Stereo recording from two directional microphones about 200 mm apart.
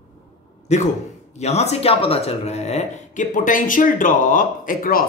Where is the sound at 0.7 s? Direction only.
35° left (ahead or behind).